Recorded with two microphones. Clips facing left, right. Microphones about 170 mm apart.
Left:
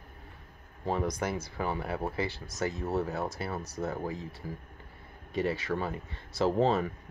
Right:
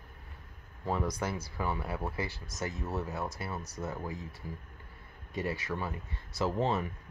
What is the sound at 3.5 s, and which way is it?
Speech, 60° left (ahead or behind).